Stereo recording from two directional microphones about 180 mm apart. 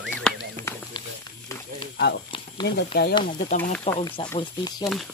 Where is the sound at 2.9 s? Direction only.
60° left (ahead or behind).